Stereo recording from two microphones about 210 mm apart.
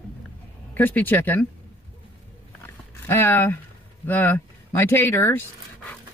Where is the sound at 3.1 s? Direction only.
10° left (ahead or behind).